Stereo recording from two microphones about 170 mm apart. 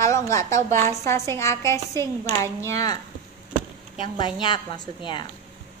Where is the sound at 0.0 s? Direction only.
15° left (ahead or behind).